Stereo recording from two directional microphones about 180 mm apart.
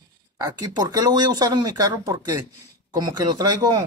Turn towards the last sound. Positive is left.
turn(degrees=-20)  # may be behind; listen again after turning